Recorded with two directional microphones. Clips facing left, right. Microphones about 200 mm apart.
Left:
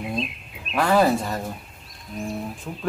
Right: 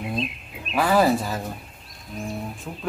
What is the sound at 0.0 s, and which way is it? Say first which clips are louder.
Speech: even; centre (ahead or behind).